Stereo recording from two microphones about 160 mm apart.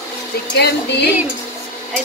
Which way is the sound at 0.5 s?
90° left.